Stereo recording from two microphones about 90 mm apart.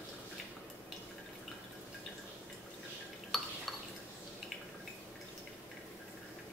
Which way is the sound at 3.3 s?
Centre (ahead or behind).